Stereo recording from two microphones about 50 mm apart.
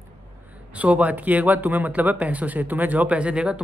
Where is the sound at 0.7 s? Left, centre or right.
Right.